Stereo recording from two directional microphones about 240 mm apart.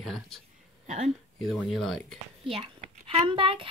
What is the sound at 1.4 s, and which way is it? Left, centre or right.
Speech, centre.